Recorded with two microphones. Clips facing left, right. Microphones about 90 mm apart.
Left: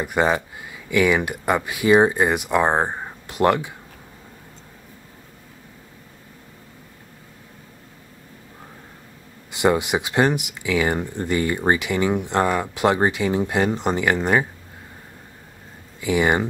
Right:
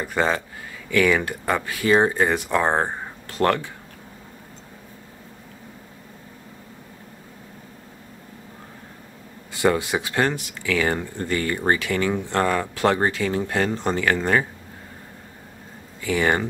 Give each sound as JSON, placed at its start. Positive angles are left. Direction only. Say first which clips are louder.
{"t": 0.0, "sound": "speech", "louder": "left 2 dB", "side_deg": 15}
{"t": 9.5, "sound": "speech", "louder": "left 2 dB", "side_deg": 20}
{"t": 16.0, "sound": "speech", "louder": "left 2 dB", "side_deg": 15}